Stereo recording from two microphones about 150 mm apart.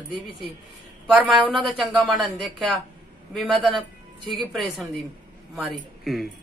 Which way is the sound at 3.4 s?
35° right (ahead or behind).